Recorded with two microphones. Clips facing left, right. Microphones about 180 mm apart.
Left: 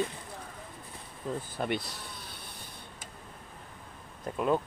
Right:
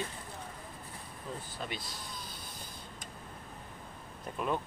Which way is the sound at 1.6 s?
65° left (ahead or behind).